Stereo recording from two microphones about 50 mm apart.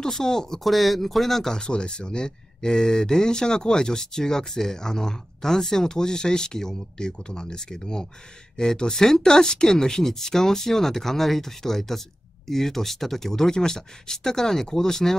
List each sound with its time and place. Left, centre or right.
0.0 s speech: centre
1.6 s speech: centre